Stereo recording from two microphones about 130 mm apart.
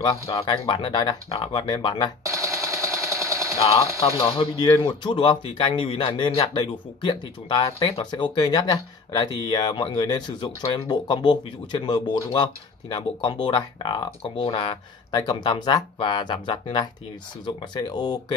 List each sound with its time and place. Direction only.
0.3 s speech: 45° left (ahead or behind)
2.2 s machine gun: 25° right (ahead or behind)
4.2 s speech: 45° left (ahead or behind)
15.0 s speech: 35° left (ahead or behind)